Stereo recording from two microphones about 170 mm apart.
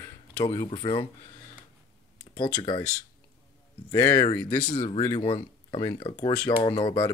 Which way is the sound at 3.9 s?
25° left (ahead or behind).